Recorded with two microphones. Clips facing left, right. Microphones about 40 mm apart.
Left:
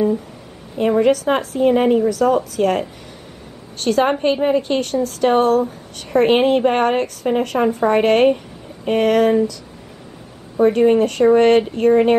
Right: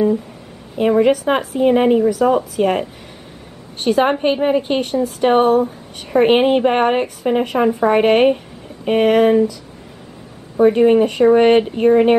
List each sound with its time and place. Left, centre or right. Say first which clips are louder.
0.7 s a woman's voice: right 1 dB; centre
10.6 s a woman's voice: right 2 dB; centre